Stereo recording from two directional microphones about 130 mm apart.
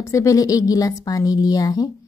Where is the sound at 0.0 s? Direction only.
25° left (ahead or behind).